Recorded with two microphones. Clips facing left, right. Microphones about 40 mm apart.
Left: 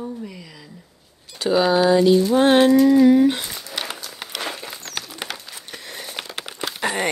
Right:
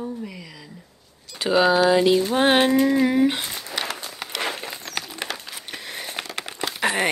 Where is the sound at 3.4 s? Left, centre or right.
Right.